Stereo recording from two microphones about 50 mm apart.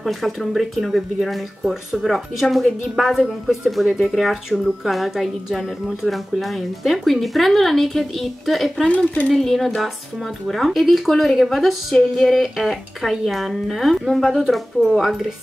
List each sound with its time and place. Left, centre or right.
0.0 s a woman's voice: centre
8.8 s speech: left
9.3 s a woman's voice: centre